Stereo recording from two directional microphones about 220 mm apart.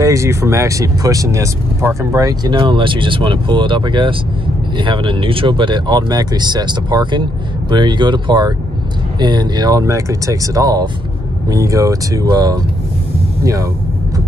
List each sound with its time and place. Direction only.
0.0 s speech: 15° right (ahead or behind)